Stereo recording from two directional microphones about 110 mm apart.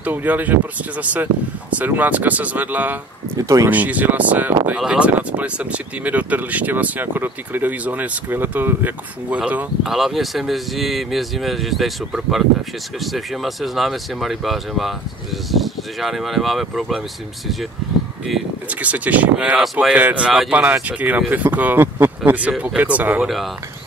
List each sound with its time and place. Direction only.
0.0 s speech: 15° right (ahead or behind)
3.3 s speech: 30° right (ahead or behind)
3.7 s speech: 15° right (ahead or behind)
9.8 s speech: centre (ahead or behind)
18.7 s speech: 15° right (ahead or behind)
20.0 s speech: 10° right (ahead or behind)
23.2 s speech: centre (ahead or behind)